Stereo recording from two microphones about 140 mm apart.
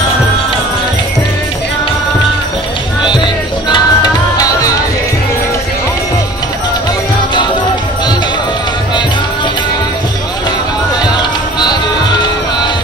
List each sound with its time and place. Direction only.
3.6 s music: 30° left (ahead or behind)